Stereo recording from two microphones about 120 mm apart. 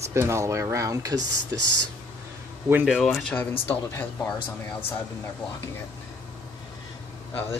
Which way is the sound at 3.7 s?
15° left (ahead or behind).